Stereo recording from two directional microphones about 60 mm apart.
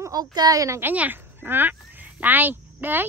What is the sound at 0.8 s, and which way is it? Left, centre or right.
Speech, right.